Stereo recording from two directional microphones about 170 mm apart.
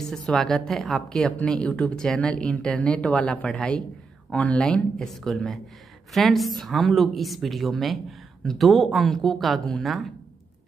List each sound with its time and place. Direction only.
0.1 s a woman's voice: 5° left (ahead or behind)